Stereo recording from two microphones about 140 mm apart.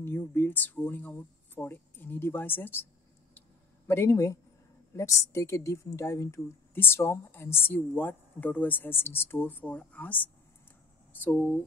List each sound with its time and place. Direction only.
0.0 s a woman's voice: 15° left (ahead or behind)
3.3 s a sound: 15° left (ahead or behind)
4.9 s a woman's voice: 20° left (ahead or behind)